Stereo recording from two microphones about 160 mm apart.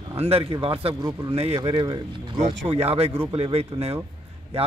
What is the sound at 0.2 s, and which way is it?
Speech, 35° right (ahead or behind).